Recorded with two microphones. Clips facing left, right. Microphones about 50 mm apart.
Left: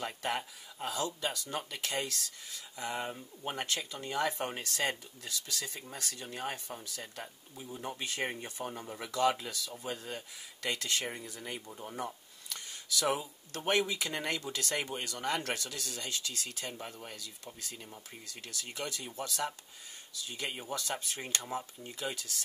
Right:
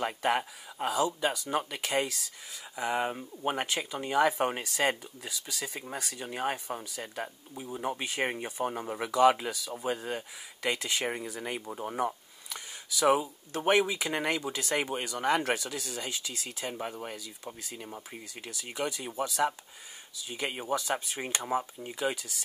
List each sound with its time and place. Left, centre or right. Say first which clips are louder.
0.0 s speech: right 7 dB; centre
11.6 s speech: right 7 dB; right
12.4 s speech: right 1 dB; centre
17.8 s speech: right 7 dB; right
18.2 s speech: right 3 dB; centre